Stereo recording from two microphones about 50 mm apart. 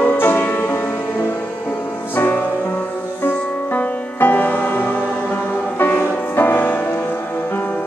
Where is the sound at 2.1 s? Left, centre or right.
Left.